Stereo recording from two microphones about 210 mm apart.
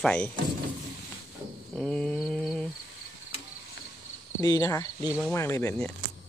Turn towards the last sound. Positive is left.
turn(degrees=10)  # may be behind; listen again after turning